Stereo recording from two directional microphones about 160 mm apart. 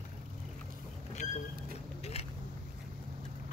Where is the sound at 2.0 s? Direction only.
40° left (ahead or behind).